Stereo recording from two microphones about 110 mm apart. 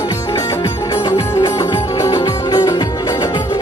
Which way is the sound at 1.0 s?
40° left (ahead or behind).